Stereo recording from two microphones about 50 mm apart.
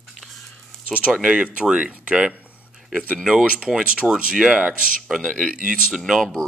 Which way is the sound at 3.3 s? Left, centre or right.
Centre.